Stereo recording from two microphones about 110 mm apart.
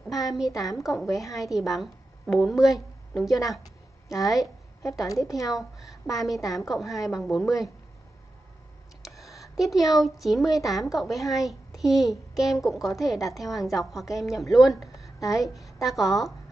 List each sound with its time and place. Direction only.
0.0 s a sound: centre (ahead or behind)
0.6 s a woman's voice: centre (ahead or behind)
9.0 s a woman's voice: centre (ahead or behind)